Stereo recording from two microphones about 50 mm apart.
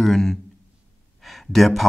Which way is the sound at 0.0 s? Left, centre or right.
Centre.